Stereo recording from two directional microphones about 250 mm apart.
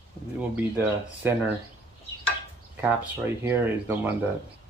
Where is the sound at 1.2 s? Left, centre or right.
Centre.